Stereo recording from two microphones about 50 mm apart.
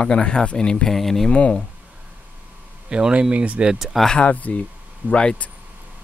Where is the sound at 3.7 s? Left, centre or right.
Centre.